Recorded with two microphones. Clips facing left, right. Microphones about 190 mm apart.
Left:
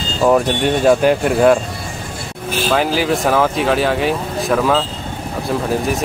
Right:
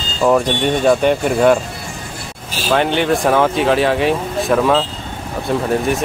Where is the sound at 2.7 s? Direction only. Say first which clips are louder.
Right 2 dB; centre (ahead or behind).